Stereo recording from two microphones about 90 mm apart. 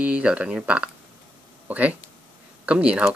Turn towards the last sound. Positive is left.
turn(degrees=-10)  # may be behind; listen again after turning